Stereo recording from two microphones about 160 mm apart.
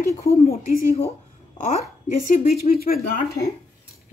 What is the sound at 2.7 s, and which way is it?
Speech, 70° left (ahead or behind).